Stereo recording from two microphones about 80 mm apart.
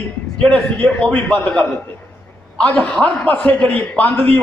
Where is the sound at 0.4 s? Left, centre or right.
Centre.